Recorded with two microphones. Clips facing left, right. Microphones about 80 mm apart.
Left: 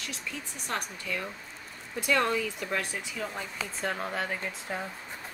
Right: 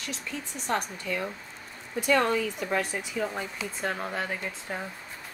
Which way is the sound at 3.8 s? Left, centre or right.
Centre.